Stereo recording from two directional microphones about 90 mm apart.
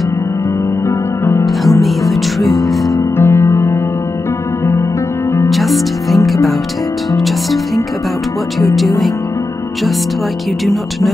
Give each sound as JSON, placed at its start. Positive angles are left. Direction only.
{"t": 0.8, "sound": "music", "side_deg": 25}
{"t": 1.4, "sound": "music", "side_deg": 0}
{"t": 3.2, "sound": "music", "side_deg": 25}
{"t": 5.5, "sound": "music", "side_deg": 0}
{"t": 10.6, "sound": "music", "side_deg": 0}